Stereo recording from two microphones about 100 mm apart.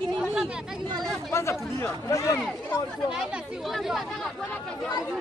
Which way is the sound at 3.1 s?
Centre (ahead or behind).